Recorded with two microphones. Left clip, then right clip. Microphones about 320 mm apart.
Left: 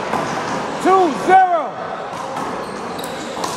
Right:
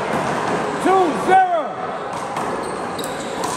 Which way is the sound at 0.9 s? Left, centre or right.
Left.